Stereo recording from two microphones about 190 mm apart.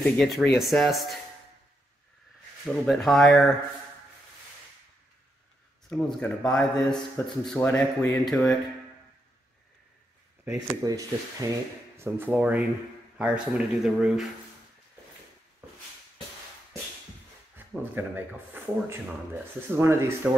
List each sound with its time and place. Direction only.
0.0 s speech: centre (ahead or behind)
2.6 s speech: centre (ahead or behind)
5.9 s speech: 5° left (ahead or behind)
10.4 s speech: 15° right (ahead or behind)
17.6 s speech: 10° right (ahead or behind)